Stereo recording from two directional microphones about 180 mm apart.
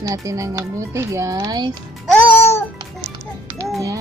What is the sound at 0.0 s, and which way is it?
Speech, 20° right (ahead or behind).